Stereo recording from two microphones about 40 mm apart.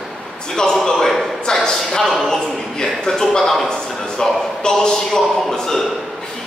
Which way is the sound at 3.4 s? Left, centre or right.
Centre.